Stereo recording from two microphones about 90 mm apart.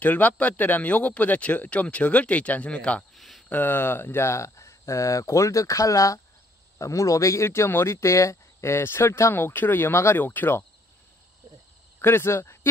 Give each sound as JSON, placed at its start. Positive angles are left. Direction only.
{"t": 0.0, "sound": "speech", "side_deg": 20}
{"t": 3.2, "sound": "a sound", "side_deg": 0}
{"t": 3.4, "sound": "speech", "side_deg": 20}
{"t": 12.0, "sound": "speech", "side_deg": 25}